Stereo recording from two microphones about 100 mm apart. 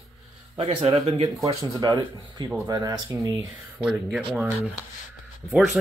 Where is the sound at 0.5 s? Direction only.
85° right.